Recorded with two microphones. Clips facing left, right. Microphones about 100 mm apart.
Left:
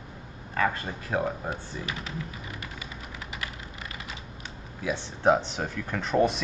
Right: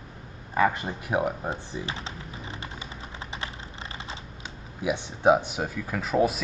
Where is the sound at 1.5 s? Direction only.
30° right (ahead or behind).